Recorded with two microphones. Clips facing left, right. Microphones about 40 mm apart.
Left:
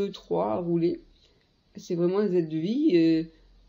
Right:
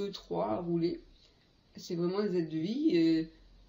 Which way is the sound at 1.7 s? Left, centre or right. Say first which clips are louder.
Left 8 dB; left.